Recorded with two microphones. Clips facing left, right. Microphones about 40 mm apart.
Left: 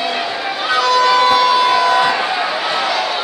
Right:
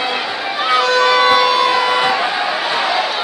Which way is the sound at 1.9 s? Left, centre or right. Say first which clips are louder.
Left 2 dB; centre.